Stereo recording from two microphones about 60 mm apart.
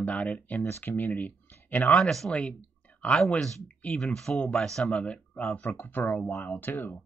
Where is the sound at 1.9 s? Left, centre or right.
Centre; by 3.9 s left.